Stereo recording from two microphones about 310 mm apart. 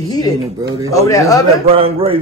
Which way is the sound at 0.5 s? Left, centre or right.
Centre.